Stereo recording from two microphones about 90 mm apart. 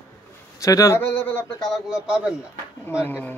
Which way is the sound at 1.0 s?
25° left (ahead or behind).